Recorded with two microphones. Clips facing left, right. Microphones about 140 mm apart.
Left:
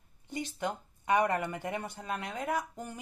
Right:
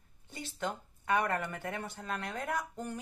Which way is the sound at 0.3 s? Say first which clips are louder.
Left 3 dB; 15° left (ahead or behind).